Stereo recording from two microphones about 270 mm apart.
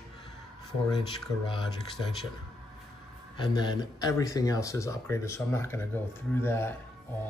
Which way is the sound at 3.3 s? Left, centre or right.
Centre.